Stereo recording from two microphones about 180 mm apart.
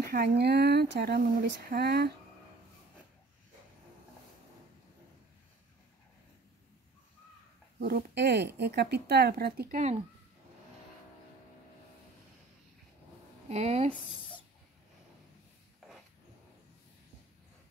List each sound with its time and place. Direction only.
0.0 s speech: 60° right (ahead or behind)
7.8 s speech: 65° right (ahead or behind)
13.5 s speech: 35° right (ahead or behind)